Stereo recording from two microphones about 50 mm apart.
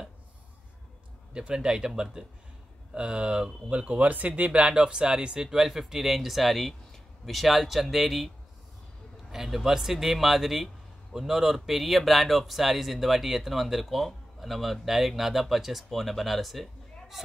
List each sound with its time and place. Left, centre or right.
1.3 s speech: centre
2.9 s speech: right
4.5 s speech: centre
9.3 s speech: centre